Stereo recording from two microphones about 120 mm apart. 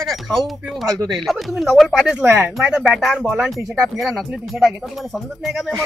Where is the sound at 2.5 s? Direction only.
5° right (ahead or behind).